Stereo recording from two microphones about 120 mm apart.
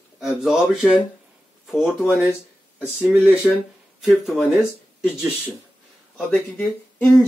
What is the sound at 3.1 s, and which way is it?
Speech, 10° right (ahead or behind).